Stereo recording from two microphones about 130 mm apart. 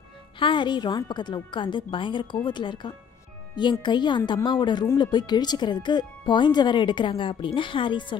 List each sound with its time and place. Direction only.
0.4 s speech: 40° left (ahead or behind)